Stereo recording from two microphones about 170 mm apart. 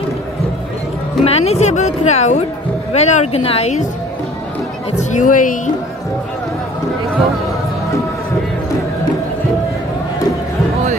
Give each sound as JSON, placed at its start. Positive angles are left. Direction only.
{"t": 1.2, "sound": "a woman's voice", "side_deg": 35}
{"t": 4.9, "sound": "speech", "side_deg": 50}
{"t": 7.1, "sound": "speech", "side_deg": 0}